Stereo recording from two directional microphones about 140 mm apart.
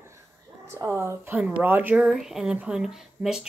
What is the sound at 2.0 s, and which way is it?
Speech, centre (ahead or behind).